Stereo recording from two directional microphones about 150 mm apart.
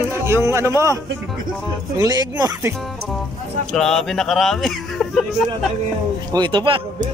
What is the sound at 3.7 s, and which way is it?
Speech, 5° left (ahead or behind).